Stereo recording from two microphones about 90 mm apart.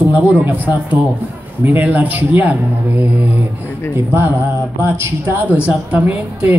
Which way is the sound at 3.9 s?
25° right (ahead or behind).